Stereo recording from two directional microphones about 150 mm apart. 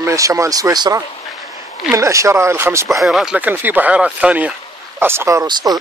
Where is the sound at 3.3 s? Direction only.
10° right (ahead or behind).